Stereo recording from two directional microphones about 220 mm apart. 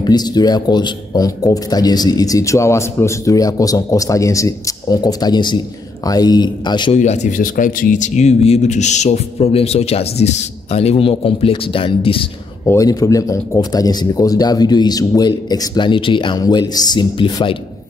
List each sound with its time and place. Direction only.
0.0 s a man's voice: 20° left (ahead or behind)
7.0 s a man's voice: 35° left (ahead or behind)